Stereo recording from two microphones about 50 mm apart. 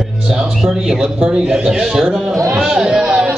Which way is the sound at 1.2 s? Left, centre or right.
Centre.